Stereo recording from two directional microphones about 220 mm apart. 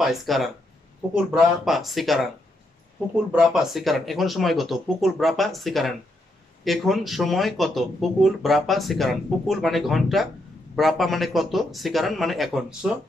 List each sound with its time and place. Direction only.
0.0 s speech: centre (ahead or behind)
3.3 s speech: centre (ahead or behind)